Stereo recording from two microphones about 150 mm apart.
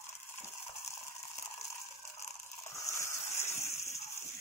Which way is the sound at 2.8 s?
20° left (ahead or behind).